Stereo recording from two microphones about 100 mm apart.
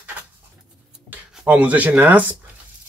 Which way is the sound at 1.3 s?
10° right (ahead or behind).